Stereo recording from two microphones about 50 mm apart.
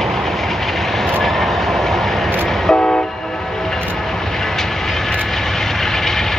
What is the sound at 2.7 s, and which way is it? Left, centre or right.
Train, centre.